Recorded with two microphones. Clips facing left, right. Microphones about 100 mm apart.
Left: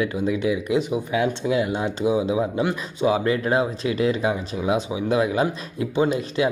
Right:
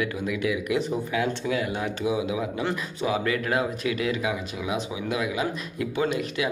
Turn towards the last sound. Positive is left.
turn(degrees=25)  # may be behind; listen again after turning